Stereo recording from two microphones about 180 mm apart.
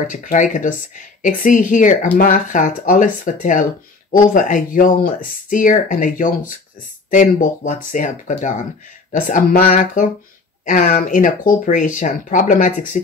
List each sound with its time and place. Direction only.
0.1 s speech: 45° left (ahead or behind)
9.7 s speech: 40° left (ahead or behind)